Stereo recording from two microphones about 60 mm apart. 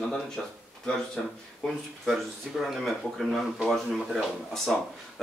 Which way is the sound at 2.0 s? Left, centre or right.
Centre.